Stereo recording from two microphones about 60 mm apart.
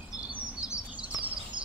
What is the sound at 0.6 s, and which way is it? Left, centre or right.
Bird, left.